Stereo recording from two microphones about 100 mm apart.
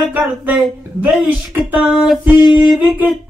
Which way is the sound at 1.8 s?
5° right (ahead or behind).